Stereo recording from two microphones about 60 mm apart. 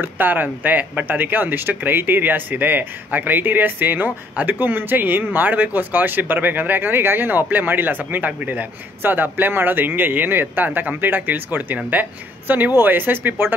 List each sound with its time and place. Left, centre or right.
0.0 s speech: right